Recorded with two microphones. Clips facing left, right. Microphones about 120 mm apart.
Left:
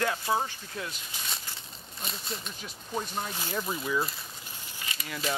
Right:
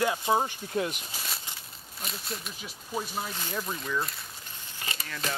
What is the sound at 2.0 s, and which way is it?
Speech, centre (ahead or behind).